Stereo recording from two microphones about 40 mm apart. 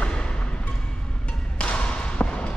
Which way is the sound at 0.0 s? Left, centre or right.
Left.